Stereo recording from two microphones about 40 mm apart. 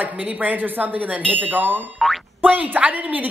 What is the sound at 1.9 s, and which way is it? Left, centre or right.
Boing, centre.